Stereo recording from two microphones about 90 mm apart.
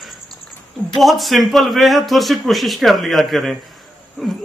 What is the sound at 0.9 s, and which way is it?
A man's voice, centre (ahead or behind).